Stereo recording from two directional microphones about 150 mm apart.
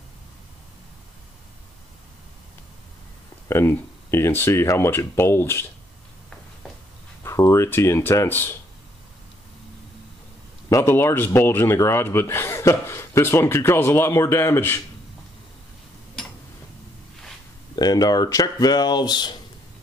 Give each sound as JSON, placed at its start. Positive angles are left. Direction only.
{"t": 3.4, "sound": "speech", "side_deg": 15}
{"t": 7.2, "sound": "speech", "side_deg": 20}
{"t": 10.7, "sound": "speech", "side_deg": 20}
{"t": 17.7, "sound": "speech", "side_deg": 25}